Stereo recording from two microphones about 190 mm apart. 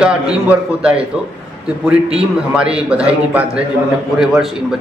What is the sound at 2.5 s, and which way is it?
A man's voice, 5° right (ahead or behind).